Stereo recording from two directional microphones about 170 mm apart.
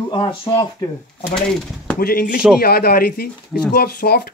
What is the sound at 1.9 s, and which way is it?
Speech, 65° left (ahead or behind).